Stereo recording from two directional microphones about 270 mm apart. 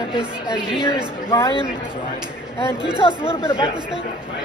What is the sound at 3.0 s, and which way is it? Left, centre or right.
Speech, centre.